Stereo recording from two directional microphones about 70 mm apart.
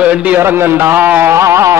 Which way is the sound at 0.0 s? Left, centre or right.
Centre.